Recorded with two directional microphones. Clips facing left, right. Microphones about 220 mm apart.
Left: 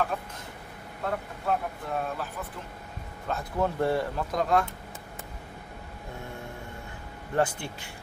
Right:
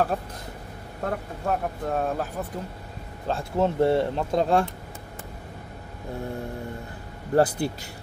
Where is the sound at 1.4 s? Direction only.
45° right (ahead or behind).